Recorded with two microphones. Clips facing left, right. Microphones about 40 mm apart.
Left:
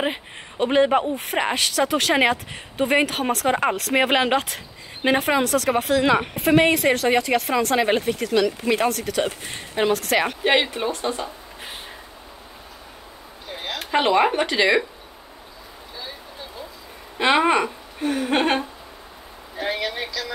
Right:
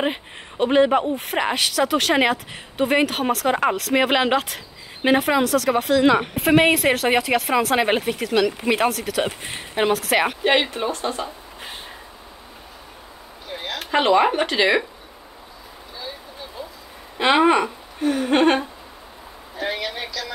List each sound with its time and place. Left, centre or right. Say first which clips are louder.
0.0 s speech: right 1 dB; centre
10.4 s speech: right 1 dB; centre
13.8 s speech: right 1 dB; centre
17.2 s speech: right 2 dB; centre